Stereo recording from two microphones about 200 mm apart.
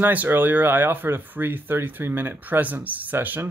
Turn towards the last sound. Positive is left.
turn(degrees=-10)  # may be behind; listen again after turning